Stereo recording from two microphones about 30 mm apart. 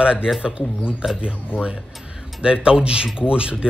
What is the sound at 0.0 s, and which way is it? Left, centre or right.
Speech, right.